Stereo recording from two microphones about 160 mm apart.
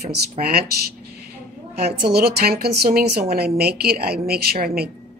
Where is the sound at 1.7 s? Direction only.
80° right.